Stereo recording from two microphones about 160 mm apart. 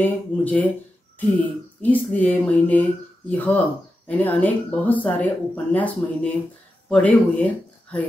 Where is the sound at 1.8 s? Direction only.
10° left (ahead or behind).